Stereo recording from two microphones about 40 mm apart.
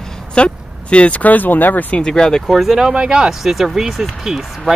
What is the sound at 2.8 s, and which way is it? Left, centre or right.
Speech, right.